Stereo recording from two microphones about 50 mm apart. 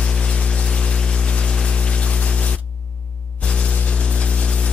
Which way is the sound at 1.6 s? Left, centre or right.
Centre.